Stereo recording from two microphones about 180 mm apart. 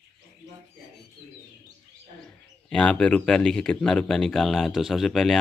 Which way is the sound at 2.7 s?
5° left (ahead or behind).